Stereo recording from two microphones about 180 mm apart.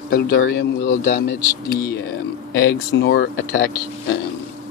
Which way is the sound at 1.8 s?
70° left (ahead or behind).